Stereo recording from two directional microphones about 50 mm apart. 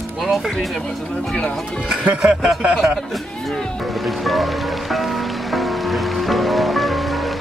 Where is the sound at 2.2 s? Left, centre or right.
Centre.